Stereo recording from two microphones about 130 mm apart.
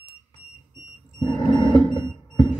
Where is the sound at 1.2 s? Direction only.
35° left (ahead or behind).